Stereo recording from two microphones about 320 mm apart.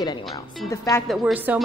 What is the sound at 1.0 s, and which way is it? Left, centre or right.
Speech, centre.